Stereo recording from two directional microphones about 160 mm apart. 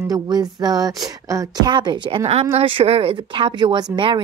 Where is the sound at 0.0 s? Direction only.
25° right (ahead or behind).